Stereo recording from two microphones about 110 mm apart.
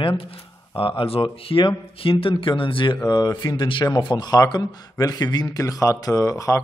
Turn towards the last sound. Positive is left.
turn(degrees=30)  # may be behind; listen again after turning